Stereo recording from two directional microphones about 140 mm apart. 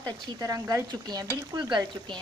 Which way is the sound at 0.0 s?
30° right (ahead or behind).